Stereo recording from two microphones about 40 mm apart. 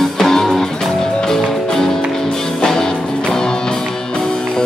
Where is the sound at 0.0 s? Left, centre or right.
Centre.